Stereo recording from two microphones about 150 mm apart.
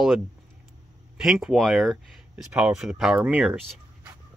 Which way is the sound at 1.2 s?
5° right (ahead or behind).